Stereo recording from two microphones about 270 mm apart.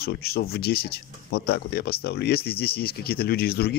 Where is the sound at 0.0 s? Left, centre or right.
Left.